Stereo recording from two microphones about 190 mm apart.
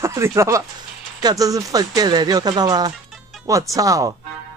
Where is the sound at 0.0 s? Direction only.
15° right (ahead or behind).